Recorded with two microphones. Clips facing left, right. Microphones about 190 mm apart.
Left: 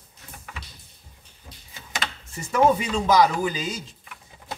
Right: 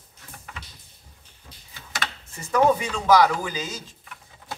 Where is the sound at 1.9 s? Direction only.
20° left (ahead or behind).